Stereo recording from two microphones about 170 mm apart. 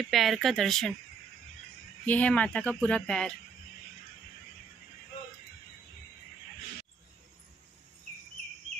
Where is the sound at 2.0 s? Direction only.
10° left (ahead or behind).